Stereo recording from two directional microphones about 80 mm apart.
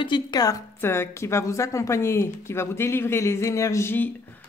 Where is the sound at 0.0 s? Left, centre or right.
Left.